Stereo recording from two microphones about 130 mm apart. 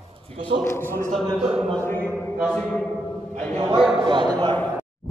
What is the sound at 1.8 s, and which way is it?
A man's voice, 15° left (ahead or behind).